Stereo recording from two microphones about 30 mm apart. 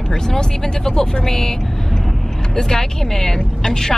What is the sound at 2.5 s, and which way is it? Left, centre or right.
A woman's voice, centre.